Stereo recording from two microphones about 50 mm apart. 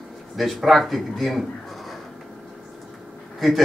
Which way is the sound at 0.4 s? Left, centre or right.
Centre.